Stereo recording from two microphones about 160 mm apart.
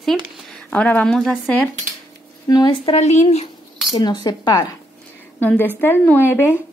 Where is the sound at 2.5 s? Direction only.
25° left (ahead or behind).